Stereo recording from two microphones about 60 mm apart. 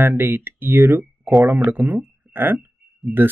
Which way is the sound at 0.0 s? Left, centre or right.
Right.